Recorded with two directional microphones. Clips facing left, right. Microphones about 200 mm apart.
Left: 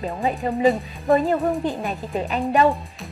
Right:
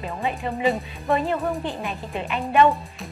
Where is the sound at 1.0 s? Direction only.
40° left (ahead or behind).